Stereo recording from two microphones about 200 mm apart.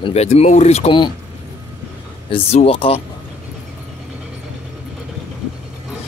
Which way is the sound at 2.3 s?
30° left (ahead or behind).